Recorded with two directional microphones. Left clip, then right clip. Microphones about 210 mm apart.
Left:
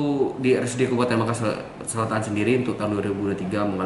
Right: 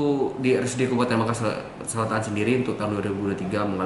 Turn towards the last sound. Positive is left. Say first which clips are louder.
# left 1 dB
turn(degrees=0)  # may be behind; listen again after turning